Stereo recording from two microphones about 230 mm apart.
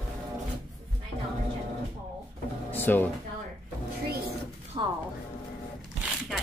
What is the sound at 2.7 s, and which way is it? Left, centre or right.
Speech, centre.